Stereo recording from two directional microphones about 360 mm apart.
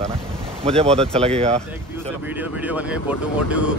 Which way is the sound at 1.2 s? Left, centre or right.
Centre.